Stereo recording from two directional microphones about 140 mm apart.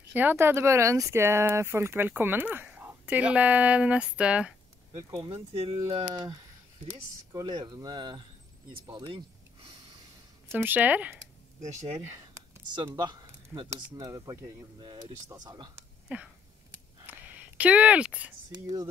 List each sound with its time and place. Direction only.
0.1 s speech: 15° right (ahead or behind)
4.9 s speech: 30° right (ahead or behind)
10.5 s speech: 15° right (ahead or behind)
12.0 s a sound: 20° right (ahead or behind)
12.7 s speech: 30° right (ahead or behind)
16.1 s speech: 10° right (ahead or behind)
17.0 s a sound: 10° right (ahead or behind)
18.5 s speech: 25° right (ahead or behind)